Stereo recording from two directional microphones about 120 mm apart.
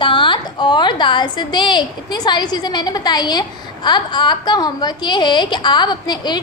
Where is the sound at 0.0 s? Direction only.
45° left (ahead or behind).